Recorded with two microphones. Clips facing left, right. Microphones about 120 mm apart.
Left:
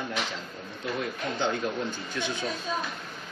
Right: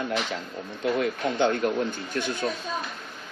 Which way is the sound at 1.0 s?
60° right (ahead or behind).